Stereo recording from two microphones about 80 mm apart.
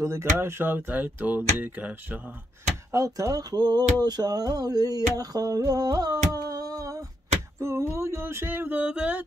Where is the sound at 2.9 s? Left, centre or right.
Right.